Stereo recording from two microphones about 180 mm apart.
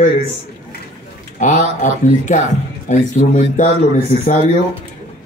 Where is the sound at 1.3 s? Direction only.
40° left (ahead or behind).